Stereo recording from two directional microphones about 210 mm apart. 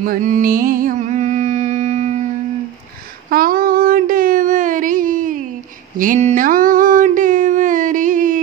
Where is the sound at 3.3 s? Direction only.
45° right (ahead or behind).